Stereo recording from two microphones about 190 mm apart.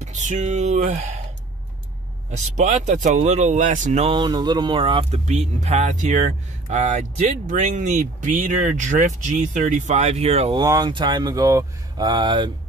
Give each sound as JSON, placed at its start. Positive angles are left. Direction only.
{"t": 0.0, "sound": "speech", "side_deg": -40}
{"t": 2.3, "sound": "speech", "side_deg": -40}
{"t": 10.6, "sound": "speech", "side_deg": -20}